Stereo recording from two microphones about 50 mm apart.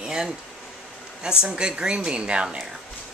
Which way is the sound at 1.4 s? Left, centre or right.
Centre.